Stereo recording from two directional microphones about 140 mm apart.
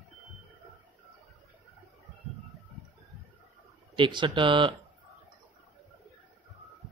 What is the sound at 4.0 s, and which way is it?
Speech, 35° right (ahead or behind).